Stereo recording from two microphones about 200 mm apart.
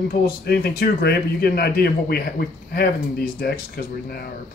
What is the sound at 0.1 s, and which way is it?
Speech, 50° left (ahead or behind).